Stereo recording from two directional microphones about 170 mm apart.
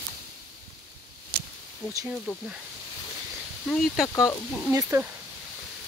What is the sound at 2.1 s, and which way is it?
Speech, 5° right (ahead or behind).